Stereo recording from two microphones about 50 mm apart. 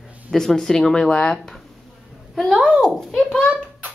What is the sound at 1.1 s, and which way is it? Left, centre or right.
Speech, left.